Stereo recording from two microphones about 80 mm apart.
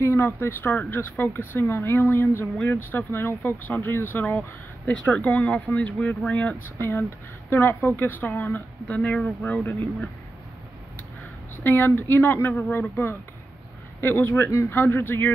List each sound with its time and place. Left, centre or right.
0.0 s speech: left; by 6.5 s centre
6.8 s speech: left
11.5 s speech: left